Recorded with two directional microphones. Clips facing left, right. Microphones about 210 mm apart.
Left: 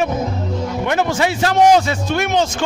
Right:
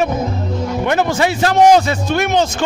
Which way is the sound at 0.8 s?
45° right (ahead or behind).